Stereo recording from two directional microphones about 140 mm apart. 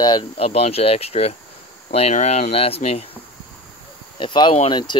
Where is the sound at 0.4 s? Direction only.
50° left (ahead or behind).